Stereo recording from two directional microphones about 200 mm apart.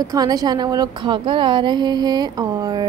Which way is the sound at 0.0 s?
20° right (ahead or behind).